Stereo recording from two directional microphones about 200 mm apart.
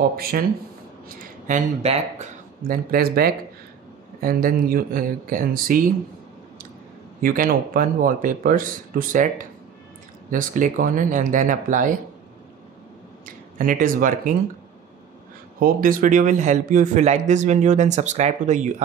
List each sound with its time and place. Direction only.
0.1 s speech: 50° right (ahead or behind)
1.0 s speech: 35° right (ahead or behind)
2.7 s speech: 50° right (ahead or behind)
7.2 s speech: 45° right (ahead or behind)
10.3 s a man's voice: 40° right (ahead or behind)
13.2 s speech: 45° right (ahead or behind)
15.6 s a man's voice: 45° right (ahead or behind)